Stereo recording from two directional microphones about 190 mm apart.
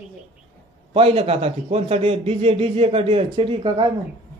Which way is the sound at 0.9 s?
30° right (ahead or behind).